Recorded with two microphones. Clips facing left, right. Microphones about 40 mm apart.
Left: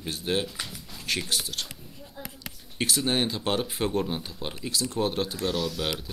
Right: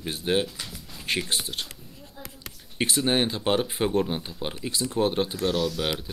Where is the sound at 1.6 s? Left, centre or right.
Centre.